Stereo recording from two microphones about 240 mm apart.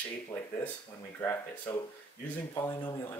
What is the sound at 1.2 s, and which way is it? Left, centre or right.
Speech, centre.